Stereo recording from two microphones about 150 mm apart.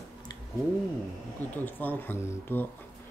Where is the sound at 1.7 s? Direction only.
10° left (ahead or behind).